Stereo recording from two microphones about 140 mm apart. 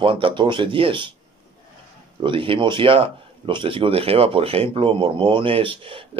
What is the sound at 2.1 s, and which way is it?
Speech, 35° right (ahead or behind).